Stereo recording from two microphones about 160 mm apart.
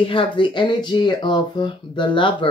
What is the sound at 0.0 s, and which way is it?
Speech, 35° left (ahead or behind).